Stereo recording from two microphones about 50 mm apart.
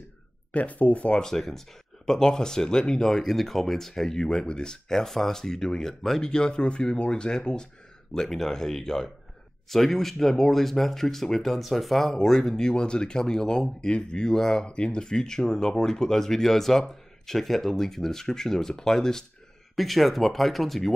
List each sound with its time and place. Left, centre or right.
0.5 s speech: left
1.2 s speech: centre